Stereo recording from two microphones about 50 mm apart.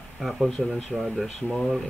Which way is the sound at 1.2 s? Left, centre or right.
Centre.